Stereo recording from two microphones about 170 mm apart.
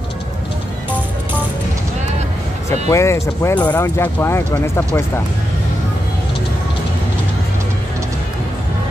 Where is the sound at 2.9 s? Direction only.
15° left (ahead or behind).